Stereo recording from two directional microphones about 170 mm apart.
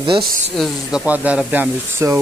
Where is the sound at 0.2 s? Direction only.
Centre (ahead or behind).